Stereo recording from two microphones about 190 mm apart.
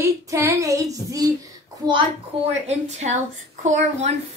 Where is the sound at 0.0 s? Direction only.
15° right (ahead or behind).